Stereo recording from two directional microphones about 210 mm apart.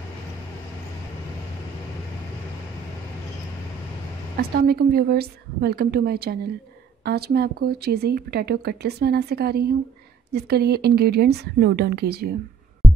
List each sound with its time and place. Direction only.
4.4 s speech: 45° right (ahead or behind)
12.8 s music: centre (ahead or behind)